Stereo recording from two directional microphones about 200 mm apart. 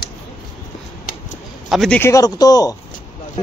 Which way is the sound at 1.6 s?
Centre (ahead or behind).